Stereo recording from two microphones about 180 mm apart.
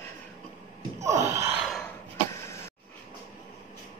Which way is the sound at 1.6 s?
Centre (ahead or behind).